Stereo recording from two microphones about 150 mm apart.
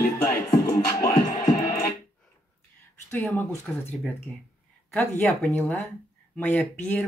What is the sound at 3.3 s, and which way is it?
Speech, 15° left (ahead or behind).